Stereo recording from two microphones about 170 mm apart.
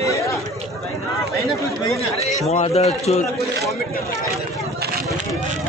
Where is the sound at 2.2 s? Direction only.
35° left (ahead or behind).